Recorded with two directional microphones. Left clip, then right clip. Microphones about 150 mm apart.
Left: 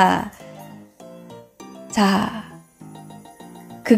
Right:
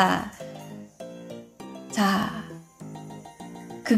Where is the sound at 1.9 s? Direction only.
30° left (ahead or behind).